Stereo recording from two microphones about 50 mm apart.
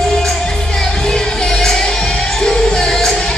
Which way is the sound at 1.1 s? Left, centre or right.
Centre.